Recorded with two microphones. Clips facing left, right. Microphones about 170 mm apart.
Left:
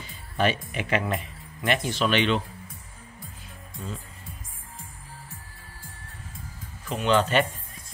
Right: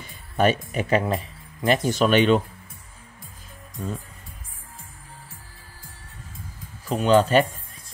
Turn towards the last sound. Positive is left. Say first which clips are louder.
# right 5 dB
turn(degrees=-40)  # may be behind; listen again after turning